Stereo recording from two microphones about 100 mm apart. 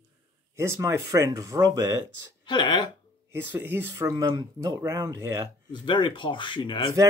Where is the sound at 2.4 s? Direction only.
50° left (ahead or behind).